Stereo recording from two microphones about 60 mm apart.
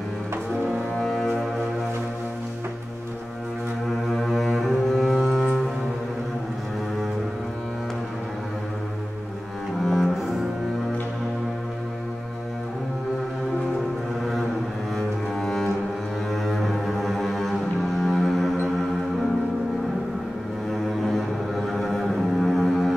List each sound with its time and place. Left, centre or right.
0.9 s music: centre
4.1 s cello: centre
9.8 s cello: centre
14.2 s music: centre
15.0 s cello: centre
21.7 s cello: centre